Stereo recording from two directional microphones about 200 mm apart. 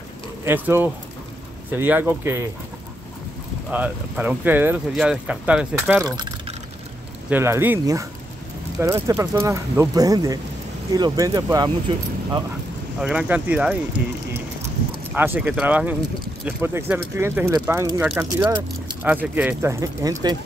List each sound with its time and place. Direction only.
0.5 s speech: 10° right (ahead or behind)
3.7 s speech: 5° right (ahead or behind)
6.0 s typing: 20° right (ahead or behind)
7.2 s speech: 10° right (ahead or behind)
13.0 s speech: 5° right (ahead or behind)
19.2 s speech: 5° right (ahead or behind)